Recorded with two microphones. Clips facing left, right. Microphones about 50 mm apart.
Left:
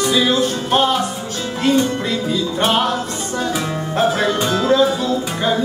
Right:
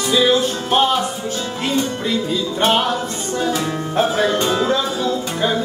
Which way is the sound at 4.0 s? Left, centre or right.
Centre.